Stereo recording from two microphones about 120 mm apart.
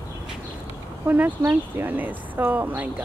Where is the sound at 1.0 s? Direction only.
15° right (ahead or behind).